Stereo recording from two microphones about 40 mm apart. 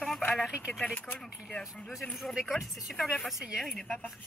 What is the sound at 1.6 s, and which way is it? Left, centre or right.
Speech, centre.